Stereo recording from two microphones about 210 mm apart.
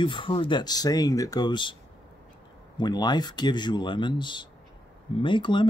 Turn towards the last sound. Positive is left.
turn(degrees=20)  # may be behind; listen again after turning